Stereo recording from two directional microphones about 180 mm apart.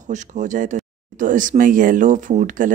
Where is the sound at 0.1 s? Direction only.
45° right (ahead or behind).